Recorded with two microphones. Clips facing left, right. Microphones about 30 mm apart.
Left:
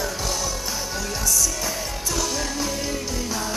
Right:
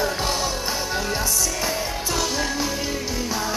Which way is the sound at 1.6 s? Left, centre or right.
Right.